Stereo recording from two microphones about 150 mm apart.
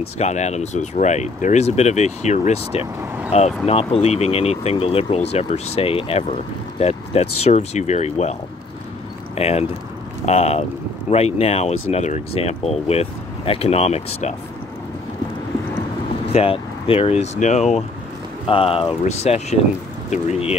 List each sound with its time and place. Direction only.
0.0 s speech: 50° left (ahead or behind)
9.4 s speech: 45° left (ahead or behind)
16.3 s speech: 40° left (ahead or behind)
18.5 s speech: 40° left (ahead or behind)